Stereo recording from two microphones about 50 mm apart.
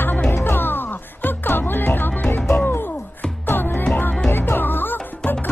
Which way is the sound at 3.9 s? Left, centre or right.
Left.